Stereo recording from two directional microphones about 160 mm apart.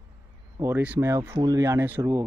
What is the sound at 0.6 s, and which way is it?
Speech, 10° right (ahead or behind).